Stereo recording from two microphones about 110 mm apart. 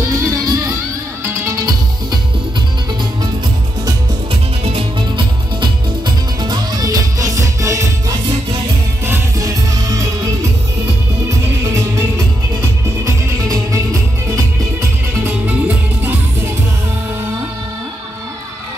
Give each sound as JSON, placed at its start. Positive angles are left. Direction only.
{"t": 0.0, "sound": "music", "side_deg": -30}
{"t": 4.6, "sound": "music", "side_deg": -50}
{"t": 9.4, "sound": "music", "side_deg": -30}
{"t": 11.2, "sound": "music", "side_deg": -25}
{"t": 13.0, "sound": "music", "side_deg": -30}